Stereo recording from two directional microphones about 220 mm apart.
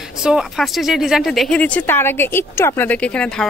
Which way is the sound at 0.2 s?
Centre (ahead or behind).